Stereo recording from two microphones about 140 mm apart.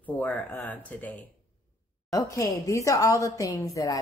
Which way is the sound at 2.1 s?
20° left (ahead or behind).